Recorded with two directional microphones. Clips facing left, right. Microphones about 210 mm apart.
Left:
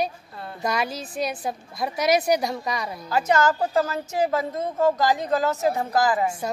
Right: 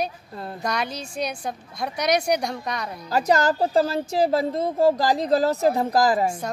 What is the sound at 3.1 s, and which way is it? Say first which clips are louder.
A woman's voice: right 1 dB; 35° right (ahead or behind).